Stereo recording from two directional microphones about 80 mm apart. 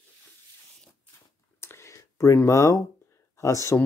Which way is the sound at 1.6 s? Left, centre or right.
Left.